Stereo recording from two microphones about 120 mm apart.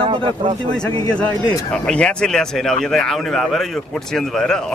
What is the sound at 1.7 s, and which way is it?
Speech, 10° left (ahead or behind).